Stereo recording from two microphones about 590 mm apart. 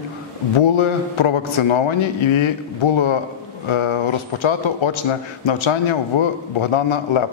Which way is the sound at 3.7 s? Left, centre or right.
Left.